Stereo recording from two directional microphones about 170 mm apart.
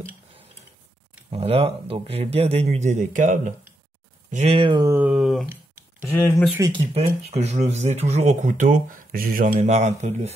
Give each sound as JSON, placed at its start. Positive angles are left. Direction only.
{"t": 1.3, "sound": "speech", "side_deg": -35}
{"t": 4.3, "sound": "speech", "side_deg": -40}
{"t": 5.5, "sound": "a sound", "side_deg": -15}
{"t": 6.0, "sound": "speech", "side_deg": 15}
{"t": 6.7, "sound": "speech", "side_deg": -35}
{"t": 9.7, "sound": "speech", "side_deg": -40}